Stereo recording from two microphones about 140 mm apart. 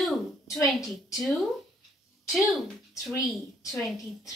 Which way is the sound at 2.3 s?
Centre (ahead or behind).